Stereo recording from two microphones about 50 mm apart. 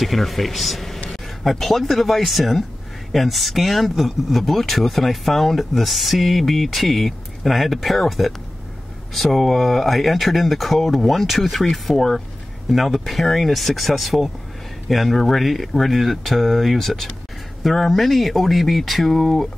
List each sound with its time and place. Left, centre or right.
0.0 s speech: centre